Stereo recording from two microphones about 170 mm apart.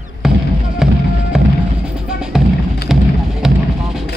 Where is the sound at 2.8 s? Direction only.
5° right (ahead or behind).